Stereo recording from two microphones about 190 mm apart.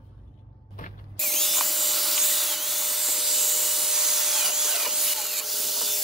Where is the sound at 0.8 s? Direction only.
45° left (ahead or behind).